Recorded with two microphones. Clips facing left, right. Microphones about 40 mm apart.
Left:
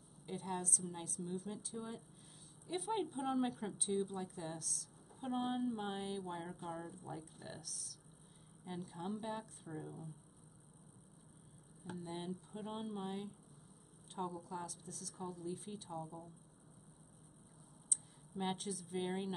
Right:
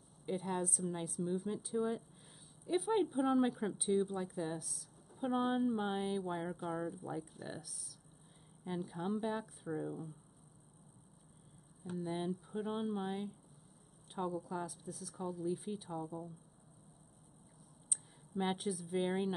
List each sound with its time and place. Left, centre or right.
0.3 s speech: centre
11.8 s speech: centre
17.8 s speech: centre